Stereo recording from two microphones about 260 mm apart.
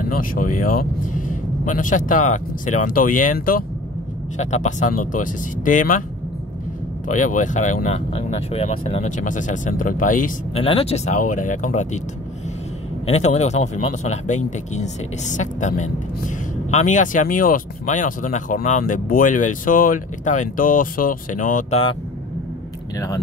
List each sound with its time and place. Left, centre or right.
0.0 s speech: left
7.1 s speech: left
13.0 s speech: left
22.9 s speech: centre